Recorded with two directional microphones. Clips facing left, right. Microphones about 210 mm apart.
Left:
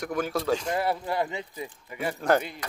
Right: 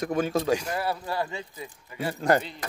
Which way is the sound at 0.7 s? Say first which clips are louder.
Left 2 dB; 25° left (ahead or behind).